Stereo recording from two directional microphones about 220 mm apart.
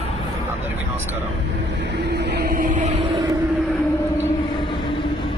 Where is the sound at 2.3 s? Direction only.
45° right (ahead or behind).